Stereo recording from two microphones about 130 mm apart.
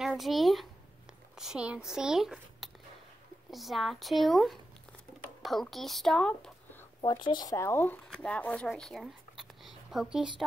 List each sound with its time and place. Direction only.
0.0 s speech: centre (ahead or behind)
7.2 s speech: 30° left (ahead or behind); by 10.2 s 5° right (ahead or behind)